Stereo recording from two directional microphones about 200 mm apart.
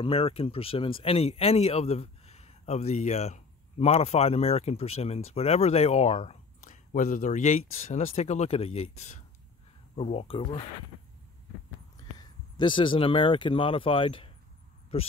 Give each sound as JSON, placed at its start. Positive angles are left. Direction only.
{"t": 0.0, "sound": "speech", "side_deg": 30}
{"t": 12.5, "sound": "speech", "side_deg": 25}